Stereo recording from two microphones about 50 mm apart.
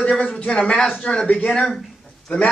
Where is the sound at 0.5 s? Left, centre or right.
Centre.